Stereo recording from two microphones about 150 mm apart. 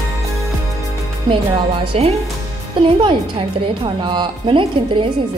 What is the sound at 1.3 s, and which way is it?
Speech, 35° right (ahead or behind).